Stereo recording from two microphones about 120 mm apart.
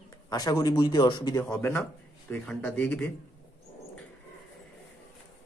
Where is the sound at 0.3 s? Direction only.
35° left (ahead or behind).